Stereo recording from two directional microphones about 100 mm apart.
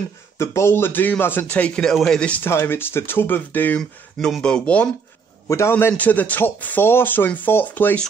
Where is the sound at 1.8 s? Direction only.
5° left (ahead or behind).